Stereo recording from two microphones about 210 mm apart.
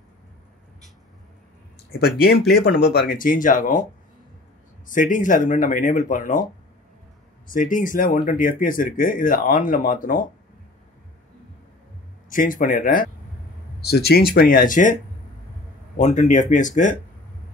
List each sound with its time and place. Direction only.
1.9 s speech: 50° left (ahead or behind)
4.8 s speech: 40° left (ahead or behind)
7.5 s speech: 40° left (ahead or behind)
12.3 s speech: 40° left (ahead or behind)
16.0 s speech: 35° left (ahead or behind)